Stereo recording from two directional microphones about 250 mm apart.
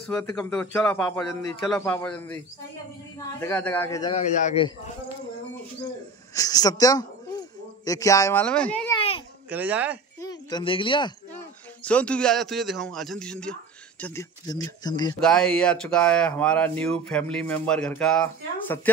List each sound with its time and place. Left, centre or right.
0.1 s speech: centre
4.1 s a man's voice: left
6.3 s a man's voice: centre
8.9 s a sound: left
9.5 s speech: centre
10.2 s speech: centre
11.8 s speech: centre
15.1 s speech: centre